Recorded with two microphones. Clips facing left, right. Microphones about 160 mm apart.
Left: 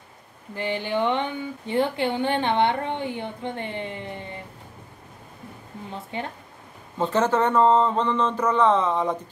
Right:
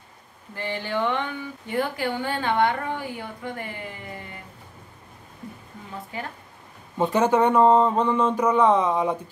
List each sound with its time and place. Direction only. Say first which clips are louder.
0.6 s speech: left 2 dB; 20° left (ahead or behind)
6.1 s speech: left 3 dB; 25° left (ahead or behind)
7.0 s speech: right 2 dB; 15° right (ahead or behind)